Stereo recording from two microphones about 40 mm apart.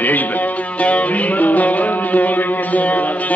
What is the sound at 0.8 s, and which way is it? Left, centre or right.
Music, left.